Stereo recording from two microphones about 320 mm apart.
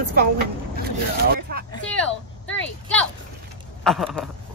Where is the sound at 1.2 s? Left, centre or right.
Right.